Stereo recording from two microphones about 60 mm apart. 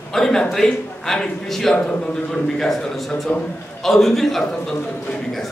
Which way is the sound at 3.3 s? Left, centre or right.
Left.